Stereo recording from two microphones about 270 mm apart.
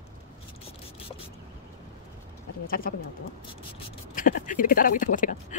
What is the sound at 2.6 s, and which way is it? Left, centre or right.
Speech, left.